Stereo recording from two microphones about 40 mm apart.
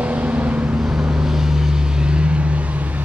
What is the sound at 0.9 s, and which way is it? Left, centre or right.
Vehicle, centre.